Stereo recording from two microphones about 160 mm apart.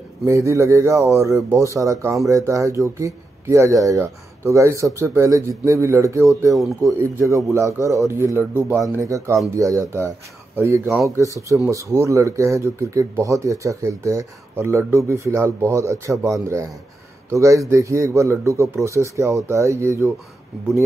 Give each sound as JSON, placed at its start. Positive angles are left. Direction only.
{"t": 0.2, "sound": "speech", "side_deg": -20}